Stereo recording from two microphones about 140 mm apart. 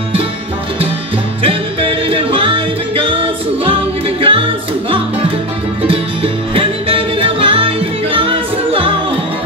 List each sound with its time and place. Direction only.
1.4 s music: 40° right (ahead or behind)
5.8 s music: 40° right (ahead or behind)